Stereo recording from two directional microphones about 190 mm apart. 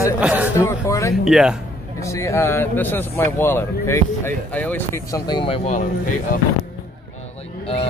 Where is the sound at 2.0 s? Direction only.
15° left (ahead or behind).